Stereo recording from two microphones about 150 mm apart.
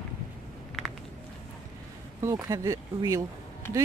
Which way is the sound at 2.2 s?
20° right (ahead or behind).